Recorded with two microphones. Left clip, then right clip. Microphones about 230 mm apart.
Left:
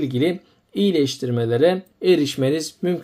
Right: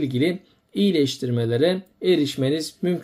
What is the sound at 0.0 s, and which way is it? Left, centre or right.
Speech, centre.